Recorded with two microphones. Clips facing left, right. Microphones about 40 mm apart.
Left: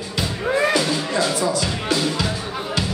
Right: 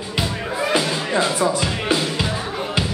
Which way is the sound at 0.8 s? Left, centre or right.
Right.